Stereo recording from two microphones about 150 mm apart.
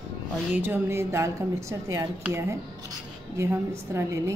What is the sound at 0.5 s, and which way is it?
A woman's voice, 15° right (ahead or behind).